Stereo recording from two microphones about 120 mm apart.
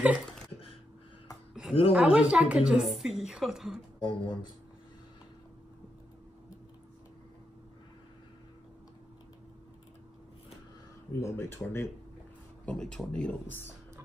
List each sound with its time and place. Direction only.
1.7 s speech: 55° left (ahead or behind)
2.1 s a woman's voice: 10° right (ahead or behind)
4.0 s speech: 40° left (ahead or behind)
11.1 s speech: 25° left (ahead or behind)
12.6 s speech: 5° left (ahead or behind)